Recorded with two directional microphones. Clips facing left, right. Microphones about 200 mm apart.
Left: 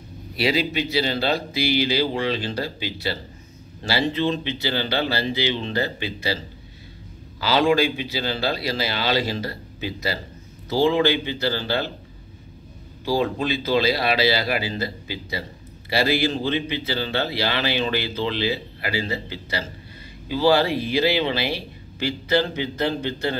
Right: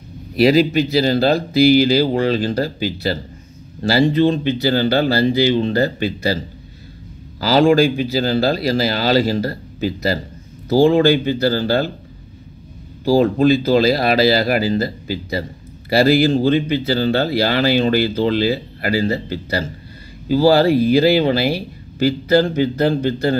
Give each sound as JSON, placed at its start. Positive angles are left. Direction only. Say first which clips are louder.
{"t": 0.4, "sound": "speech", "louder": "right 9 dB", "side_deg": -45}
{"t": 13.0, "sound": "speech", "louder": "right 9 dB", "side_deg": -45}